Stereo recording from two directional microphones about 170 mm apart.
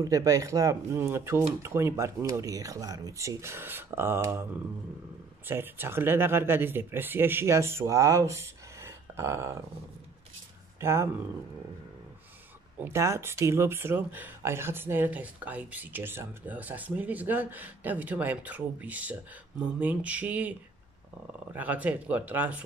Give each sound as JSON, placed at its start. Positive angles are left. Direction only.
{"t": 0.0, "sound": "speech", "side_deg": -20}
{"t": 5.5, "sound": "speech", "side_deg": -15}
{"t": 10.8, "sound": "speech", "side_deg": -15}
{"t": 12.8, "sound": "speech", "side_deg": -15}
{"t": 21.5, "sound": "speech", "side_deg": -10}